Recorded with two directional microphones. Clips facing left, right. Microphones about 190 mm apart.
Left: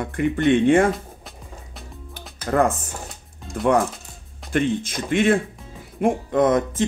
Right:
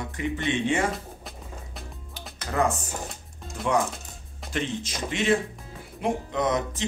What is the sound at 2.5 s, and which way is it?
Speech, 55° left (ahead or behind).